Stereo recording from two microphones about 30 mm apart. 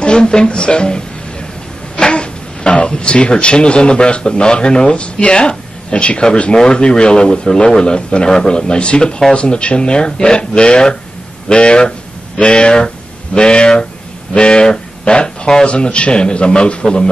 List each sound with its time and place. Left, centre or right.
0.0 s speech: left
6.5 s speech: left
15.6 s speech: left